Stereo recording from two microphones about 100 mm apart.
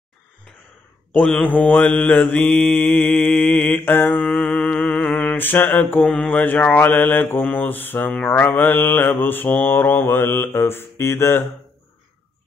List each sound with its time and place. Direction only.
1.2 s mantra: 10° left (ahead or behind)